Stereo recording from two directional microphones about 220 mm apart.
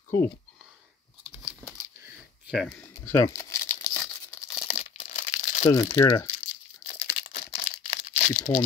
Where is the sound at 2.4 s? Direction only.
Centre (ahead or behind).